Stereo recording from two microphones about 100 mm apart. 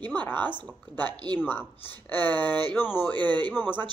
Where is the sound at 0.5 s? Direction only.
20° left (ahead or behind).